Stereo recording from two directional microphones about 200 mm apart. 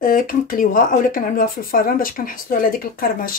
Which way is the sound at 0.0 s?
45° left (ahead or behind).